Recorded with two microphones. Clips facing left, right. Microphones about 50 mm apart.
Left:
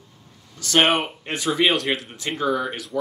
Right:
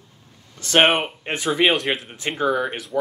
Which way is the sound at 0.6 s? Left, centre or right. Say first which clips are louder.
Right 2 dB; right.